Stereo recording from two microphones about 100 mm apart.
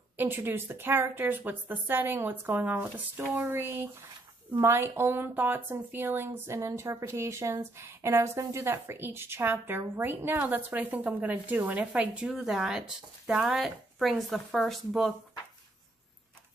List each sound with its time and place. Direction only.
0.2 s speech: 20° right (ahead or behind); by 15.1 s centre (ahead or behind)